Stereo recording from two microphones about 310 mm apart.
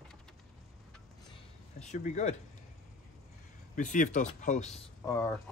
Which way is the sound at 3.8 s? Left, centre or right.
Left.